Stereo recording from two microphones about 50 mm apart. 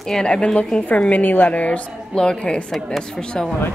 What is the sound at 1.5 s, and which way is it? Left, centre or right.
Speech, left.